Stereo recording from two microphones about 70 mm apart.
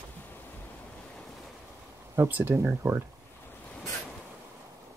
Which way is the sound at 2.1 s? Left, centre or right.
Right.